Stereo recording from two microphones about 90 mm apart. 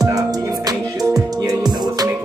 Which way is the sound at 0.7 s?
40° right (ahead or behind).